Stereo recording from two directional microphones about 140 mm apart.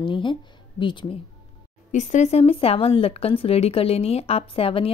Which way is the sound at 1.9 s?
60° left (ahead or behind).